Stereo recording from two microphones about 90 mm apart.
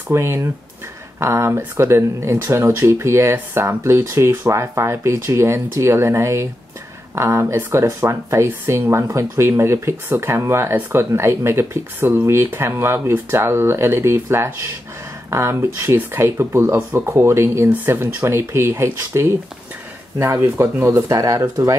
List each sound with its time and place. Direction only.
0.1 s speech: 30° right (ahead or behind)